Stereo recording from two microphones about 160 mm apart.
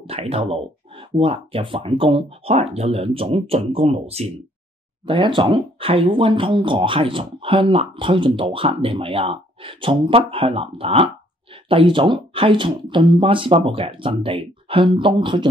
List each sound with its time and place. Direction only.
0.0 s speech: 40° right (ahead or behind)